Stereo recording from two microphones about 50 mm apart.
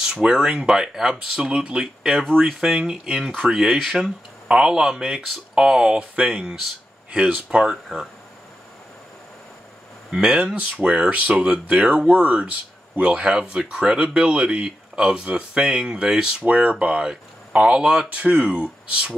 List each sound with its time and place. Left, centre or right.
0.0 s speech: centre
4.5 s speech: centre
7.4 s speech: centre
10.2 s speech: right
18.1 s speech: right